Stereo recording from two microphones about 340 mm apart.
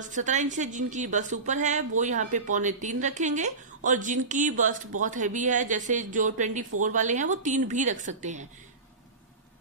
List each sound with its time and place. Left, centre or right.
0.0 s a woman's voice: right